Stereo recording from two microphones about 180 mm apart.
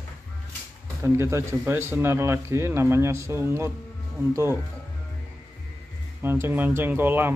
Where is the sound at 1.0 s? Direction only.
15° right (ahead or behind).